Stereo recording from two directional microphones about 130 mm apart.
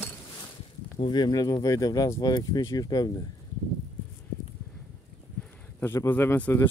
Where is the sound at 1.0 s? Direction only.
35° left (ahead or behind).